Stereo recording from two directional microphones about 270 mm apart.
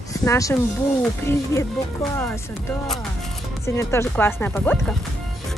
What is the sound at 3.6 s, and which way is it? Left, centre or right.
Speech, centre.